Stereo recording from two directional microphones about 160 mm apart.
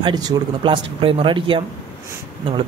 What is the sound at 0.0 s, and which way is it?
Speech, 25° right (ahead or behind).